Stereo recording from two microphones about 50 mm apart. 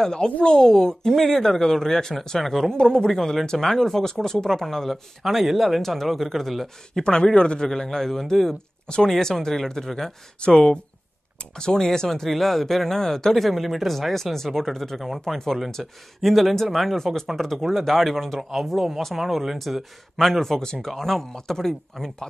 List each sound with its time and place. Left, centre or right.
0.0 s speech: centre
2.7 s speech: centre
7.0 s speech: centre
10.4 s speech: centre